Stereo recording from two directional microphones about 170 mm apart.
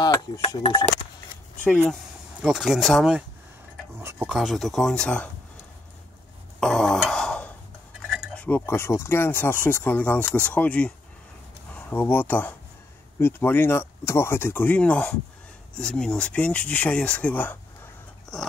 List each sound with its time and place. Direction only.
0.0 s speech: 25° left (ahead or behind)
2.4 s speech: 5° right (ahead or behind)
4.0 s speech: 15° right (ahead or behind)
4.3 s speech: centre (ahead or behind)
6.6 s a sound: centre (ahead or behind)
8.1 s cutlery: centre (ahead or behind)
8.5 s speech: 10° left (ahead or behind)
18.3 s dog: centre (ahead or behind)